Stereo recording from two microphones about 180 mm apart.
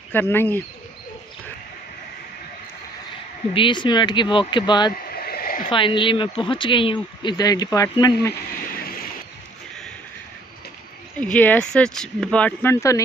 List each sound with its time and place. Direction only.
0.1 s speech: 10° left (ahead or behind)
3.5 s speech: 25° left (ahead or behind)
5.1 s stream: 60° left (ahead or behind)
5.7 s speech: 30° left (ahead or behind)
8.8 s a sound: 55° left (ahead or behind)
11.1 s speech: 10° left (ahead or behind)